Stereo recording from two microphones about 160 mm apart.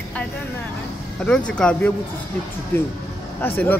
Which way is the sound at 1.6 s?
10° left (ahead or behind).